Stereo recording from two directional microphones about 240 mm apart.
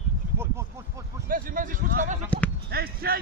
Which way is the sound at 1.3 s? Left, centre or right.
Right.